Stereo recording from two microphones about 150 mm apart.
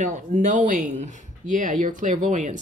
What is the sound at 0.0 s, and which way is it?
Speech, 60° right (ahead or behind).